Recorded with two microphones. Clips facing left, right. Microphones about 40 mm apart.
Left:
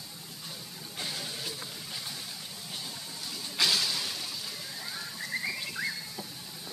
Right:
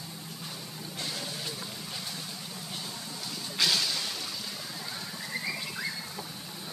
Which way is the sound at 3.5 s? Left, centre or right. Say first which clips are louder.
Even; centre.